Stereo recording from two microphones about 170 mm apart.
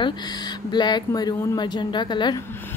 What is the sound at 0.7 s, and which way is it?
Speech, 25° left (ahead or behind).